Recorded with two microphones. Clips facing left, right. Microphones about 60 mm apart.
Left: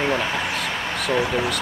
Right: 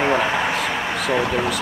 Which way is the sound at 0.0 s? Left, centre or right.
Right.